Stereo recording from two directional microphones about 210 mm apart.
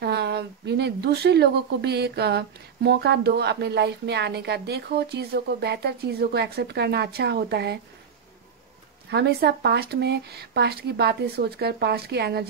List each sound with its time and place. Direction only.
0.0 s speech: 50° right (ahead or behind)
9.1 s speech: 50° right (ahead or behind)